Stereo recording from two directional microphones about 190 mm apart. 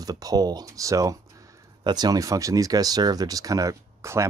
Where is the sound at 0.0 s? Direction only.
20° right (ahead or behind).